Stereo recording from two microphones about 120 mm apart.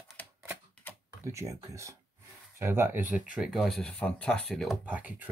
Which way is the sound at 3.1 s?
5° right (ahead or behind).